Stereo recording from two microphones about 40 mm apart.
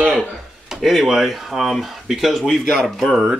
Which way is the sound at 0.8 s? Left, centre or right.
Centre.